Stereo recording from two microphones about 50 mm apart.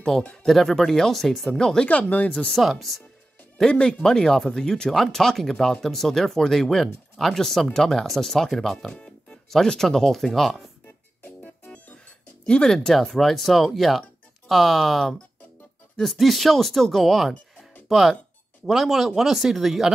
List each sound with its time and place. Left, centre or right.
0.2 s speech: left
0.5 s speech: centre
1.5 s speech: centre
1.9 s speech: left
2.5 s speech: centre
3.6 s speech: centre
8.7 s music: centre
9.5 s speech: centre
11.2 s music: left
12.4 s speech: centre